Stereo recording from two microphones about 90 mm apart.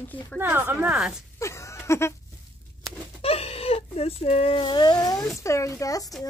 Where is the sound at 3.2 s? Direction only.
90° left.